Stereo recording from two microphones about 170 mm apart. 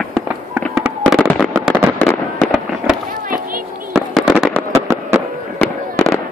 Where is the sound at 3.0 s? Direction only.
55° right (ahead or behind).